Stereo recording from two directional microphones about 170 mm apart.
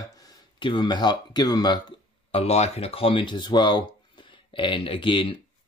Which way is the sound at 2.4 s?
40° left (ahead or behind).